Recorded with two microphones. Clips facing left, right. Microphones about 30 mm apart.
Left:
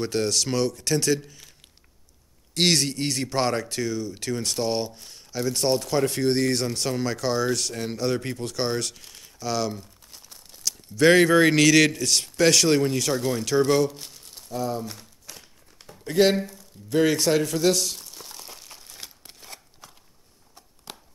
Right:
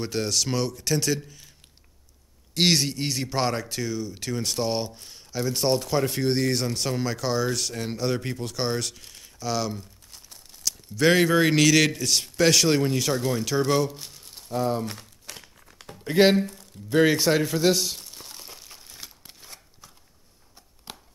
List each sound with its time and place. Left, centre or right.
0.0 s speech: centre
2.5 s speech: centre
14.5 s speech: right
14.9 s crumpling: right
16.1 s speech: centre
16.9 s crumpling: centre
19.8 s a sound: centre
20.5 s a sound: centre